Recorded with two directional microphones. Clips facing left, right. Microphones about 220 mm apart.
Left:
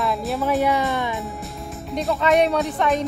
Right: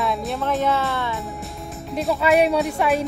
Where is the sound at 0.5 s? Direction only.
15° left (ahead or behind).